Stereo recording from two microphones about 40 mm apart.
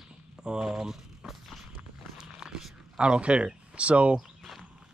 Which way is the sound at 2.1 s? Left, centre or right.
Centre.